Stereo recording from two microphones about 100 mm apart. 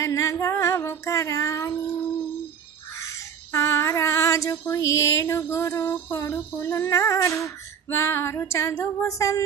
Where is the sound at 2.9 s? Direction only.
30° left (ahead or behind).